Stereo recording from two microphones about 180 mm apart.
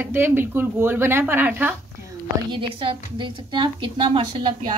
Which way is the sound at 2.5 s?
30° right (ahead or behind).